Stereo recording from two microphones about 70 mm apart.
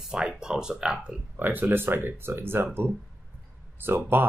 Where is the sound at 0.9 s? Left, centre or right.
Right.